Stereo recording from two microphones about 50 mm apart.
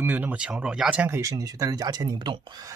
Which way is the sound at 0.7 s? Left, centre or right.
Right.